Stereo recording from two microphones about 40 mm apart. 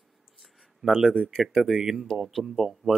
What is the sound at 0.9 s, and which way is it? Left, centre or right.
A man's voice, centre.